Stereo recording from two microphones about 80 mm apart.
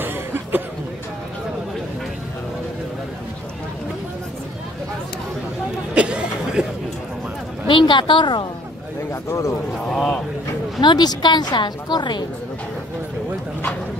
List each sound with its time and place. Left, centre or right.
0.0 s a sound: right
5.9 s a sound: centre
7.6 s speech: left
9.1 s speech: left
9.8 s speech: centre
10.8 s a woman's voice: left